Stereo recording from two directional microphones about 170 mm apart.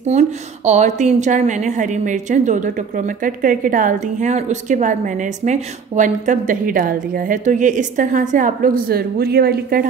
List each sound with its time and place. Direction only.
0.1 s speech: 40° right (ahead or behind); by 9.8 s 65° right (ahead or behind)